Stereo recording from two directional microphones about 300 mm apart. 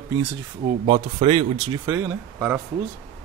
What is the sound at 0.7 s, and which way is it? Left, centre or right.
Speech, centre.